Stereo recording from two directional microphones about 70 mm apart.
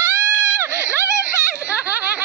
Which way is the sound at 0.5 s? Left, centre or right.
Right.